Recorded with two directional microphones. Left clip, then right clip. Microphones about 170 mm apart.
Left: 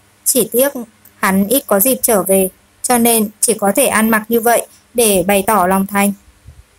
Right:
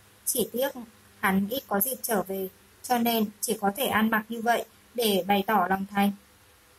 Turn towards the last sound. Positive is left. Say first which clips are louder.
# left 12 dB
turn(degrees=35)  # may be behind; listen again after turning